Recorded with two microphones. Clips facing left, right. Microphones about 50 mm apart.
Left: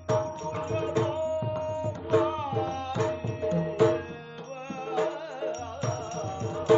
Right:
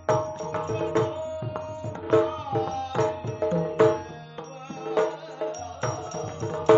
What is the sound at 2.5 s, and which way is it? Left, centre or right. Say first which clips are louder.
Music: right 3 dB; left.